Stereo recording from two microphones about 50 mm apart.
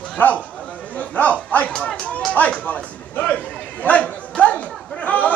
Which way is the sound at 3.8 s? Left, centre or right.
Left.